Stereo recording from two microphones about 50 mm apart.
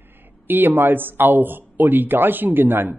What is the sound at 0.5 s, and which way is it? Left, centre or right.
Speech, right.